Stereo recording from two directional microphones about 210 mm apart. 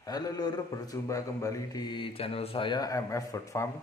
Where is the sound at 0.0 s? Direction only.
20° left (ahead or behind).